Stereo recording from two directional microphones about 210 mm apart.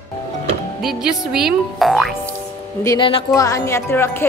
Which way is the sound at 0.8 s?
Centre (ahead or behind).